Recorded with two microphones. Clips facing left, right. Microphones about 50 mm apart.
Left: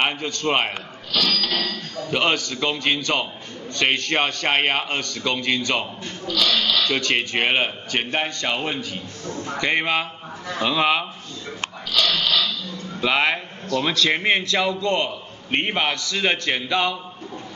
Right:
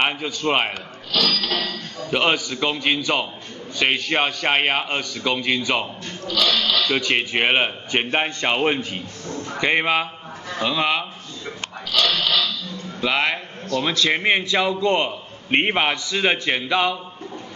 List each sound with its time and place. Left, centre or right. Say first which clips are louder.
0.0 s a man's voice: right 1 dB; centre
6.3 s a man's voice: right 1 dB; right
6.8 s a man's voice: right 1 dB; centre; by 9.0 s right
9.3 s speech: left 1 dB; centre
9.6 s a man's voice: right 2 dB; centre
10.6 s speech: left 1 dB; centre
13.0 s a man's voice: left 1 dB; centre